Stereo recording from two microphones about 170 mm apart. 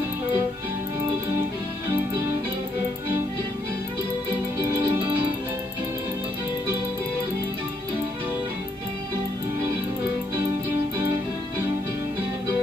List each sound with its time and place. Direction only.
4.8 s music: 30° right (ahead or behind)